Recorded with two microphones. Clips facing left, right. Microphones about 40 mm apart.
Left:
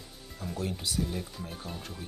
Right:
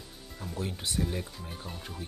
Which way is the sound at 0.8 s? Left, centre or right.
Right.